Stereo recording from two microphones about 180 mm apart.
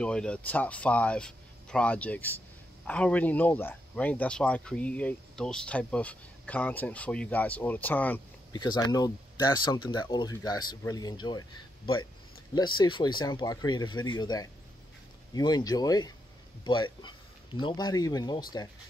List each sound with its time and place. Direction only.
0.0 s speech: 5° left (ahead or behind)
8.5 s speech: 25° left (ahead or behind)